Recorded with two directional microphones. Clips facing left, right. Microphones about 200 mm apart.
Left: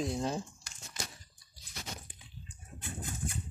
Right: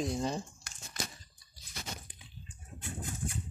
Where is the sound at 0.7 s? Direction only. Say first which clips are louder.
Right 2 dB; 60° right (ahead or behind).